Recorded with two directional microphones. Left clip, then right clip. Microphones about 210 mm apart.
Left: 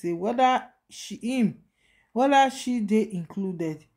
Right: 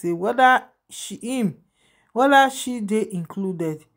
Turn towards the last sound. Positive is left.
turn(degrees=-20)  # may be behind; listen again after turning